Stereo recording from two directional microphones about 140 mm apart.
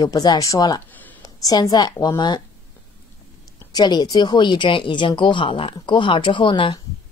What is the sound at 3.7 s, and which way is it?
Speech, 30° left (ahead or behind).